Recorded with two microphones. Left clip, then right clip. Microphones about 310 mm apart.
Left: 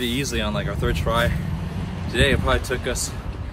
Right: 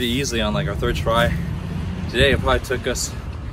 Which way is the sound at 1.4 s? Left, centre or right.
Left.